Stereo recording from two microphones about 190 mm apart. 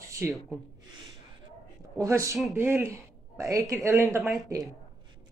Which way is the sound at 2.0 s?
15° right (ahead or behind).